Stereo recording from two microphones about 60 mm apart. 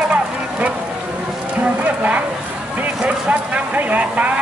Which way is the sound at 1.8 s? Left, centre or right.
Right.